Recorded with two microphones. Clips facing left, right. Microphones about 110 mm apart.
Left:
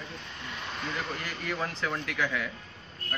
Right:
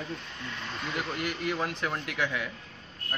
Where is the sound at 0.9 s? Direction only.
10° right (ahead or behind).